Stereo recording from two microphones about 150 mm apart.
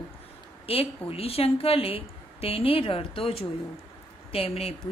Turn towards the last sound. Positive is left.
turn(degrees=40)  # may be behind; listen again after turning